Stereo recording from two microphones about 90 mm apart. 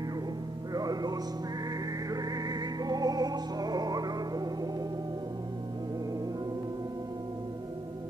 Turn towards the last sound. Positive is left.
turn(degrees=-45)  # may be behind; listen again after turning